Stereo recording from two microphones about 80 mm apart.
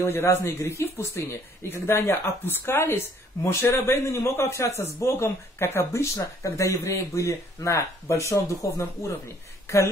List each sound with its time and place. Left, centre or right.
0.0 s a man's voice: left